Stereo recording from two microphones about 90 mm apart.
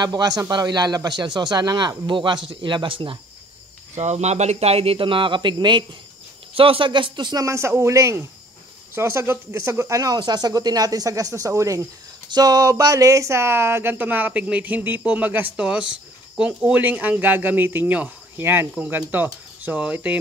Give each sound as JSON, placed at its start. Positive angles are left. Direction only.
{"t": 0.0, "sound": "speech", "side_deg": -45}
{"t": 4.7, "sound": "speech", "side_deg": -85}
{"t": 6.5, "sound": "speech", "side_deg": -90}
{"t": 7.4, "sound": "speech", "side_deg": -30}